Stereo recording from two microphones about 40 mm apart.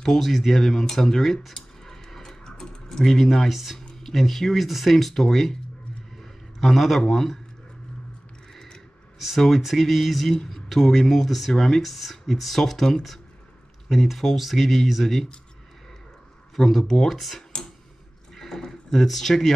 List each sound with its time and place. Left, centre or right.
0.0 s speech: centre
0.3 s speech: centre
2.4 s typing: centre
3.1 s speech: centre
6.1 s a sound: centre
7.0 s speech: centre
8.5 s a sound: centre
9.7 s speech: centre
16.5 s speech: centre
17.1 s speech: centre
17.4 s a sound: centre
18.3 s speech: centre